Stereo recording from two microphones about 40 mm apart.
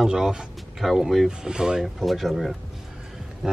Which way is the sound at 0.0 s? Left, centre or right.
Centre.